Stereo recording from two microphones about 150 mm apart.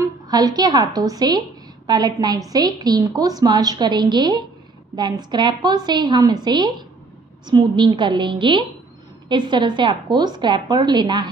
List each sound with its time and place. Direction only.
0.0 s a woman's voice: 25° right (ahead or behind)